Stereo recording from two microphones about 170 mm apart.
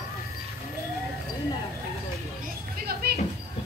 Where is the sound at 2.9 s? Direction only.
65° right (ahead or behind).